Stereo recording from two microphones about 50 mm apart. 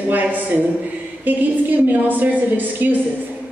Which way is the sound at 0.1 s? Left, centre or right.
Right.